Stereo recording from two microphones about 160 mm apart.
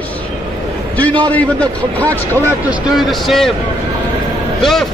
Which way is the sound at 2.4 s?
5° right (ahead or behind).